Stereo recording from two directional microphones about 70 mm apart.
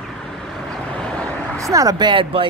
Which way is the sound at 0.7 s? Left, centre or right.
Centre.